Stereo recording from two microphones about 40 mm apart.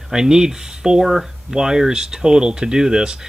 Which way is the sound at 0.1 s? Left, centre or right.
Centre.